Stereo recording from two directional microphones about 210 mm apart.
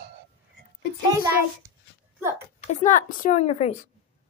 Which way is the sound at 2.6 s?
35° left (ahead or behind).